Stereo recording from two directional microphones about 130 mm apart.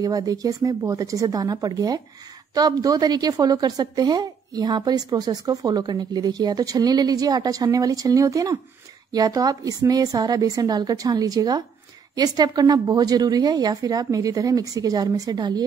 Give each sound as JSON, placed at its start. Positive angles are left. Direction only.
{"t": 0.0, "sound": "a woman's voice", "side_deg": -30}